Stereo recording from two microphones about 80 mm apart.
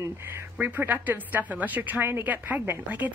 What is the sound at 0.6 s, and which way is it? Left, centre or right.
A woman's voice, right.